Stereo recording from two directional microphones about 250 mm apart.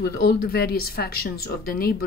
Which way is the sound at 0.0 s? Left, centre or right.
Left.